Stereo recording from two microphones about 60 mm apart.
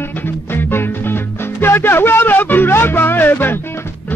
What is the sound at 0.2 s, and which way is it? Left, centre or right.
Music, left.